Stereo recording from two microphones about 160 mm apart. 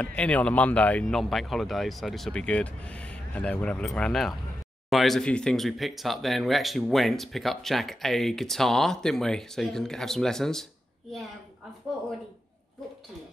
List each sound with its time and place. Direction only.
0.0 s speech: 5° left (ahead or behind)